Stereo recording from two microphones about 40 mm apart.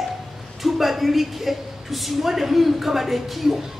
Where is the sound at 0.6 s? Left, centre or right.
Centre.